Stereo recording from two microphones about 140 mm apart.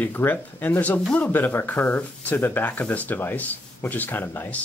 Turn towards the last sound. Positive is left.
turn(degrees=15)  # may be behind; listen again after turning